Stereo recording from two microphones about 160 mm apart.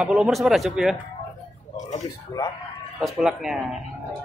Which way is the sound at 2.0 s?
25° left (ahead or behind).